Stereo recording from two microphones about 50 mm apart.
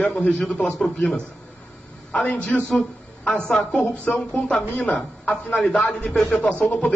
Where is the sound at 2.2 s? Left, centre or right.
Left.